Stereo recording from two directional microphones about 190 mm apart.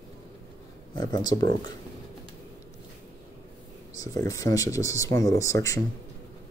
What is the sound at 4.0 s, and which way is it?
Speech, 15° left (ahead or behind).